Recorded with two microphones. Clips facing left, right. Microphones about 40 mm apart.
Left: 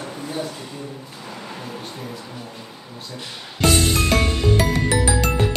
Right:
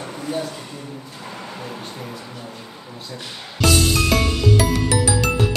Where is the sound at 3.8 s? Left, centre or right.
Left.